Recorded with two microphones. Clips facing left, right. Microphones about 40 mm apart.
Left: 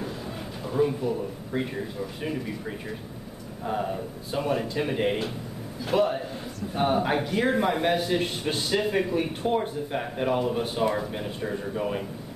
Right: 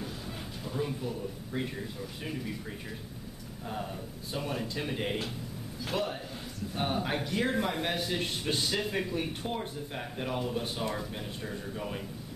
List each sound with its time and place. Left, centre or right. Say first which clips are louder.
0.7 s a man's voice: left 10 dB; centre